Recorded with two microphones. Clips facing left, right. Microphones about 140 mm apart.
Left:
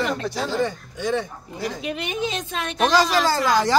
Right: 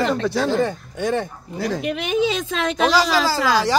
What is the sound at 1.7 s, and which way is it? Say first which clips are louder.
Speech: right 6 dB; 80° right.